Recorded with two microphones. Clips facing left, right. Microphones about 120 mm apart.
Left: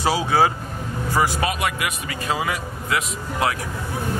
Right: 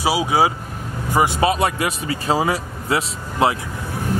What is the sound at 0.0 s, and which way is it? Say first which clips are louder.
A man's voice: right 1 dB; 10° right (ahead or behind).